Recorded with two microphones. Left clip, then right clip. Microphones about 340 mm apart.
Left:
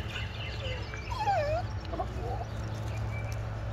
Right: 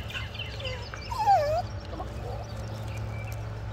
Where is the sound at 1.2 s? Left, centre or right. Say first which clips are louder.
Right 7 dB; centre.